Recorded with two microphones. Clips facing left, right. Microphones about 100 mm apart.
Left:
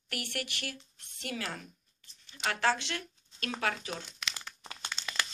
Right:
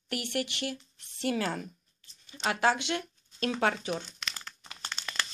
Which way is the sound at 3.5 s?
30° right (ahead or behind).